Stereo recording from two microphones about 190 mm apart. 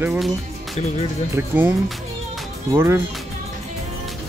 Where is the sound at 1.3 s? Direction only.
10° right (ahead or behind).